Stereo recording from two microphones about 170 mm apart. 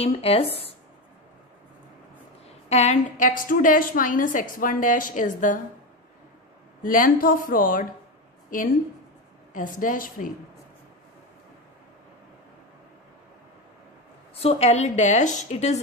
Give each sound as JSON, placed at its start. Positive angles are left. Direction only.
{"t": 0.0, "sound": "a woman's voice", "side_deg": 35}
{"t": 2.7, "sound": "a woman's voice", "side_deg": 40}
{"t": 6.8, "sound": "a woman's voice", "side_deg": 55}
{"t": 14.4, "sound": "a woman's voice", "side_deg": 35}